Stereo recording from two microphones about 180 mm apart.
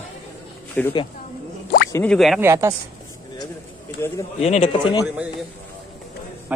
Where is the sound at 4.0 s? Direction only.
10° left (ahead or behind).